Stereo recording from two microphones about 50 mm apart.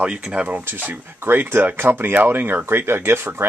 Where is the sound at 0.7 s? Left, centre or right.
Right.